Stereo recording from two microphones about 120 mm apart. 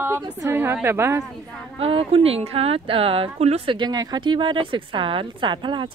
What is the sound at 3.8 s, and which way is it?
A woman's voice, 35° right (ahead or behind).